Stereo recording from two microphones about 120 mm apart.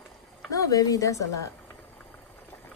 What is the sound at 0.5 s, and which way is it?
Speech, 30° left (ahead or behind).